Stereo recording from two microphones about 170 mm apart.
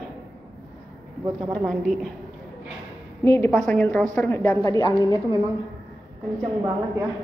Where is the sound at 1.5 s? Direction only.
Centre (ahead or behind).